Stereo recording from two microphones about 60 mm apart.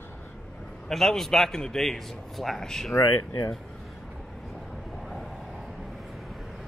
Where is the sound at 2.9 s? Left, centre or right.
Left.